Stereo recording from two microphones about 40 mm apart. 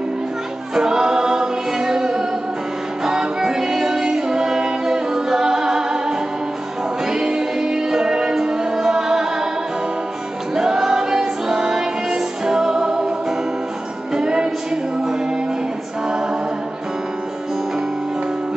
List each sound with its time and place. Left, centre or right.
0.7 s music: centre
10.5 s music: centre
14.1 s music: centre
16.1 s a capella: centre